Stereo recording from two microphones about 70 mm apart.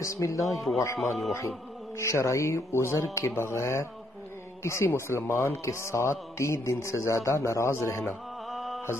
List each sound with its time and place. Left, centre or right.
0.0 s speech: left
0.9 s speech: centre
2.0 s speech: left
8.0 s music: centre